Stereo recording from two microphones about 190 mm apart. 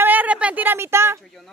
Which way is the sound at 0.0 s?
10° right (ahead or behind).